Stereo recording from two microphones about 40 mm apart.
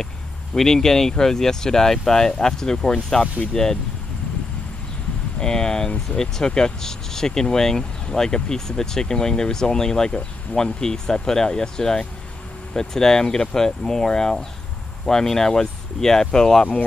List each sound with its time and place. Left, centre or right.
0.6 s speech: centre
5.4 s speech: centre